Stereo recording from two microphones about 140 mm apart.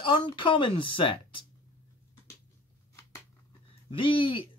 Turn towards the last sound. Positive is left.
turn(degrees=35)  # may be behind; listen again after turning